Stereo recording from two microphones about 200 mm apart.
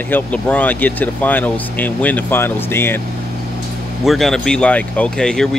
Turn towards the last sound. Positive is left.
turn(degrees=5)  # may be behind; listen again after turning